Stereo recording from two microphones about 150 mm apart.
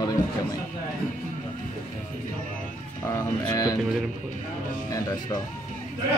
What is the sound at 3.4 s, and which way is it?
Speech, 25° left (ahead or behind).